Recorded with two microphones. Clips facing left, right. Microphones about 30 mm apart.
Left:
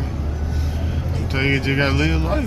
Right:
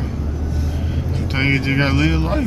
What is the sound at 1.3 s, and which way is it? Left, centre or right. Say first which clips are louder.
Speech: right 1 dB; centre.